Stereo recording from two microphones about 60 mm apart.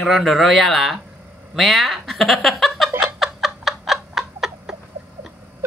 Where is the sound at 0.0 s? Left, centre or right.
Centre.